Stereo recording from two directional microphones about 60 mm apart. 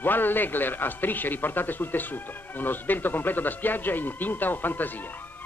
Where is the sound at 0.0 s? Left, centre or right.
Left.